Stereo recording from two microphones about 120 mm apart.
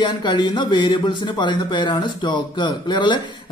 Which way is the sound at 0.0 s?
40° left (ahead or behind).